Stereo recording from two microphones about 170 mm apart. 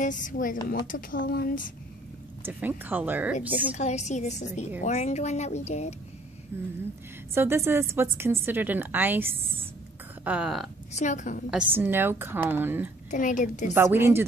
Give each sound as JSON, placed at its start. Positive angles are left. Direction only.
{"t": 0.0, "sound": "a woman's voice", "side_deg": 50}
{"t": 2.4, "sound": "a woman's voice", "side_deg": -10}
{"t": 3.7, "sound": "a woman's voice", "side_deg": 40}
{"t": 7.3, "sound": "a woman's voice", "side_deg": -15}
{"t": 10.9, "sound": "a woman's voice", "side_deg": 45}
{"t": 11.5, "sound": "a woman's voice", "side_deg": -10}
{"t": 13.1, "sound": "a woman's voice", "side_deg": 50}
{"t": 13.7, "sound": "a woman's voice", "side_deg": -15}